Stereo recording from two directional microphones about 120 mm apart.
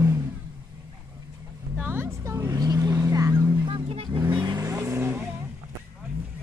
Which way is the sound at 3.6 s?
50° right (ahead or behind).